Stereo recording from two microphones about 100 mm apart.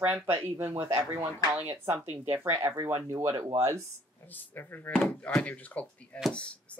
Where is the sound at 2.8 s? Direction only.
35° right (ahead or behind).